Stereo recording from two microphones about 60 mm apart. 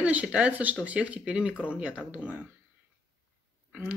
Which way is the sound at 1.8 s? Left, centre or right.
Right.